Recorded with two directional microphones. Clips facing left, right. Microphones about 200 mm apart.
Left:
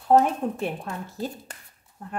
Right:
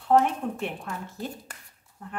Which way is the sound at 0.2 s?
35° left (ahead or behind).